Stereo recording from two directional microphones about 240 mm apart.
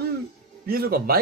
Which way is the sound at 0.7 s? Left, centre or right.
Right.